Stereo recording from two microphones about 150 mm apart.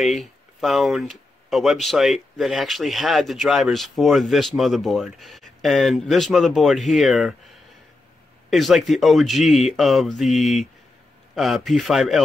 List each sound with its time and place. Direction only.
0.0 s speech: centre (ahead or behind)
8.5 s speech: centre (ahead or behind)